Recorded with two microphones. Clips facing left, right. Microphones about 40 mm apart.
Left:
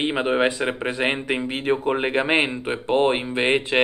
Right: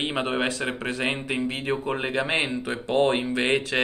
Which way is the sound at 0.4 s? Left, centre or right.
Left.